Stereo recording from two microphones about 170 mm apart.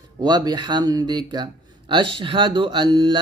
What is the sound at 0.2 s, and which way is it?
Speech, 25° right (ahead or behind).